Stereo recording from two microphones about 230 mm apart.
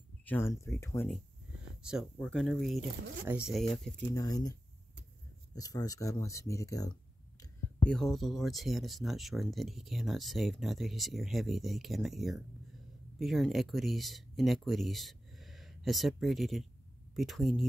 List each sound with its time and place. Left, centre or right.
0.2 s speech: centre
4.1 s speech: centre
7.8 s speech: centre